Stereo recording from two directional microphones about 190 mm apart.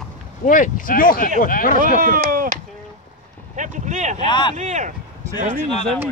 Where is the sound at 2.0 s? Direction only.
45° right (ahead or behind).